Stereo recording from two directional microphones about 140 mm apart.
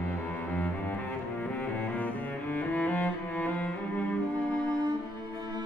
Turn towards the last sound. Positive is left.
turn(degrees=10)  # may be behind; listen again after turning